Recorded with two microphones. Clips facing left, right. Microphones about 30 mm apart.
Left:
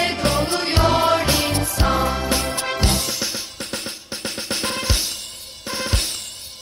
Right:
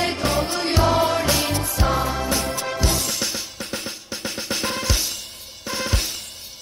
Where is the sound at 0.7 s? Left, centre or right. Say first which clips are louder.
Left 2 dB; left.